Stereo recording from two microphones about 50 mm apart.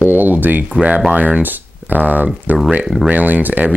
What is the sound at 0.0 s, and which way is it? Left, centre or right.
Speech, right.